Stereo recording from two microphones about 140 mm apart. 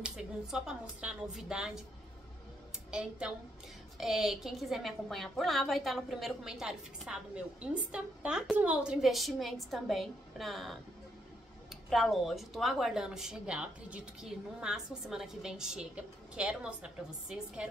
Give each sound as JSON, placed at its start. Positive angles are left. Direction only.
{"t": 0.0, "sound": "a woman's voice", "side_deg": -5}
{"t": 2.9, "sound": "a woman's voice", "side_deg": -5}
{"t": 11.9, "sound": "a woman's voice", "side_deg": 0}